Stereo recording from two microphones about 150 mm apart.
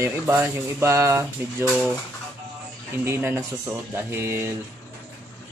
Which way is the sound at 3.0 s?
15° right (ahead or behind).